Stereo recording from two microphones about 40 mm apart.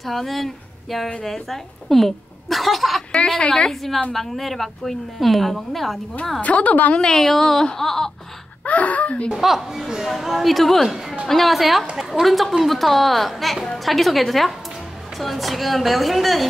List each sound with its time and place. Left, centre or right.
0.0 s a woman's voice: centre
3.1 s a woman's voice: left
4.1 s a woman's voice: centre
6.4 s speech: left
7.0 s a woman's voice: centre
8.6 s speech: left
9.3 s a woman's voice: centre